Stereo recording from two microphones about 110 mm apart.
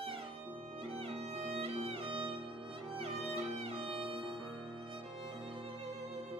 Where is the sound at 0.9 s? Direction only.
65° right (ahead or behind).